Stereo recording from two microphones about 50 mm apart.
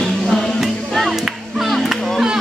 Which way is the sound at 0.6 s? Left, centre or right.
Centre.